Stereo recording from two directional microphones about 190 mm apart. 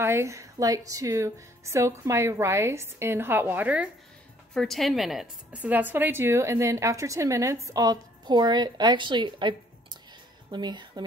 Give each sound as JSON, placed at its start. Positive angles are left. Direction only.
{"t": 0.0, "sound": "a woman's voice", "side_deg": -15}